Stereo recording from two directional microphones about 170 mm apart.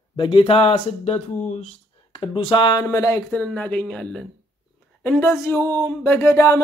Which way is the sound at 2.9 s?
15° left (ahead or behind).